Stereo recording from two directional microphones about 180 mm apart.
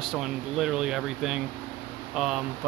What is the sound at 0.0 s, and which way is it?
Rub, 5° right (ahead or behind).